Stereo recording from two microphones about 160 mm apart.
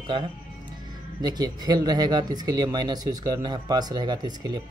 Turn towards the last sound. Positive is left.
turn(degrees=-25)  # may be behind; listen again after turning